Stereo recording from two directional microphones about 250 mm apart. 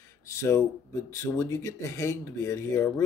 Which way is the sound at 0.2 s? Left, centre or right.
Centre.